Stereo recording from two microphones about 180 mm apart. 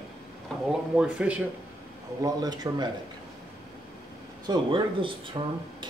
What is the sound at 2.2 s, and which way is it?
Speech, 20° right (ahead or behind).